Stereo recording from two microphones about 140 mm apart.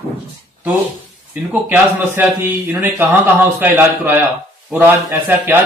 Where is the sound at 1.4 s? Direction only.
10° right (ahead or behind).